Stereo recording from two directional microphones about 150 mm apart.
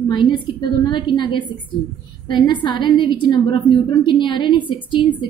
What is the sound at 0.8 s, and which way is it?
A woman's voice, 35° left (ahead or behind).